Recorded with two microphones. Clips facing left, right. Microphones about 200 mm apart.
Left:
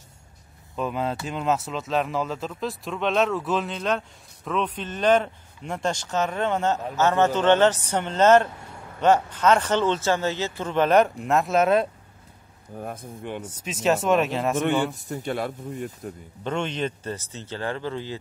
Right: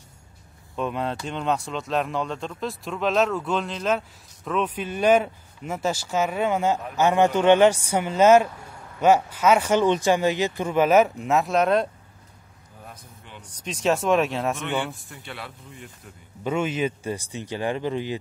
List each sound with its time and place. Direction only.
0.7 s speech: centre (ahead or behind)
12.7 s speech: 55° left (ahead or behind)
13.7 s speech: centre (ahead or behind)
15.0 s speech: 40° left (ahead or behind)
16.4 s speech: 5° right (ahead or behind)